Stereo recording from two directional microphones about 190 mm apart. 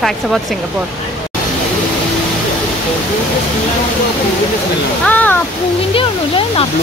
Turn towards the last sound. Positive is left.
turn(degrees=30)  # may be behind; listen again after turning